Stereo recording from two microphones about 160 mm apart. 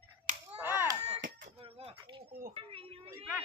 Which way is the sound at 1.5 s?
35° right (ahead or behind).